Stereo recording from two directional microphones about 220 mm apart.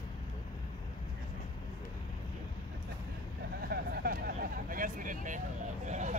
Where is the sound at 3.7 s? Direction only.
40° right (ahead or behind).